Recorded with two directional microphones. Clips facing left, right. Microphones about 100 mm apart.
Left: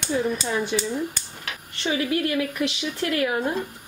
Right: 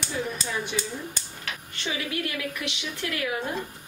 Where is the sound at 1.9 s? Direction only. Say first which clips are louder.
Left 7 dB; 35° left (ahead or behind).